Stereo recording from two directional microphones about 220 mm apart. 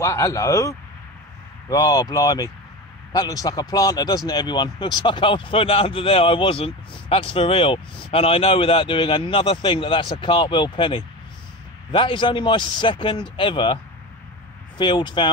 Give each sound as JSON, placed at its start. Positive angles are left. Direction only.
{"t": 0.0, "sound": "speech", "side_deg": 15}
{"t": 14.8, "sound": "speech", "side_deg": 20}